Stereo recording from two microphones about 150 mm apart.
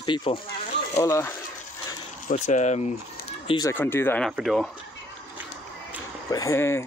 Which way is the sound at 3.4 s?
30° left (ahead or behind).